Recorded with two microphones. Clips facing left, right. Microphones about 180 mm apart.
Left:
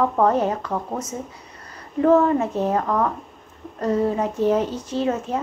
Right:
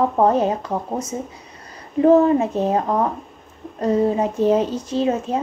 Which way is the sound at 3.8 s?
15° right (ahead or behind).